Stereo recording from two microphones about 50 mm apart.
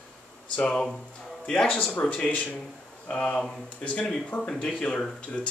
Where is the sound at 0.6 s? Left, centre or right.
Centre.